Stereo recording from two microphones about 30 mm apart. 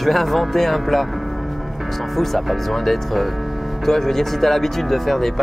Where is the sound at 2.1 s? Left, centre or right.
Centre.